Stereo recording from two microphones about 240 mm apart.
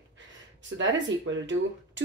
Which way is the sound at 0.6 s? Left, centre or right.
Right.